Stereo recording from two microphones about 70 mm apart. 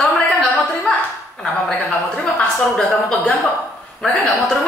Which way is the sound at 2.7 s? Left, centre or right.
Centre.